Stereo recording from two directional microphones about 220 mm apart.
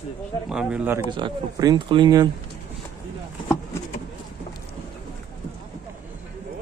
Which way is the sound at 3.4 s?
10° left (ahead or behind).